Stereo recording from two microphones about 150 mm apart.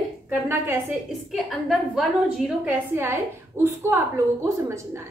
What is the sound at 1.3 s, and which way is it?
A woman's voice, centre (ahead or behind).